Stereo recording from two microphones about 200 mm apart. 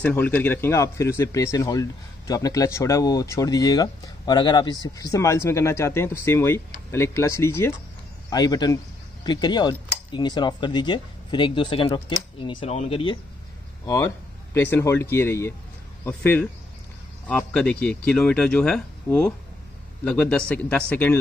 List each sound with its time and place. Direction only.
0.0 s speech: 10° left (ahead or behind); by 13.2 s 25° left (ahead or behind)
13.8 s speech: 15° left (ahead or behind)